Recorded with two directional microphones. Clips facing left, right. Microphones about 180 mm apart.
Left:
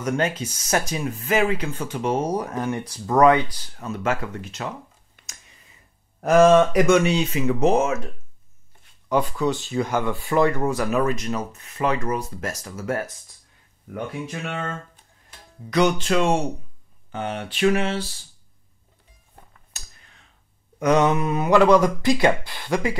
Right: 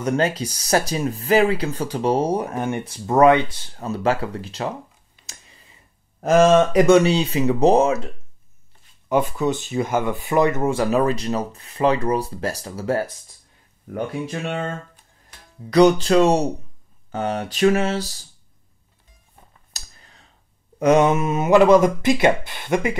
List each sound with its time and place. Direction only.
0.0 s speech: 35° right (ahead or behind)
5.2 s a sound: 30° right (ahead or behind)
6.2 s speech: 25° right (ahead or behind)
9.1 s speech: 20° right (ahead or behind)
15.7 s speech: 35° right (ahead or behind)
19.7 s clicking: 35° right (ahead or behind)
20.8 s speech: 25° right (ahead or behind)